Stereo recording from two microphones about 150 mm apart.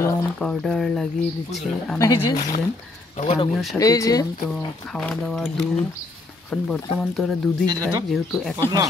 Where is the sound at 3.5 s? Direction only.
Centre (ahead or behind).